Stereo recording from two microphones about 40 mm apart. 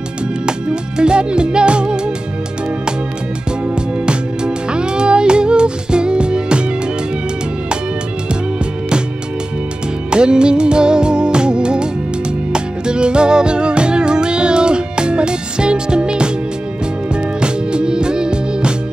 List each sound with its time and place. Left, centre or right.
0.5 s music: right
4.7 s music: right
10.1 s music: right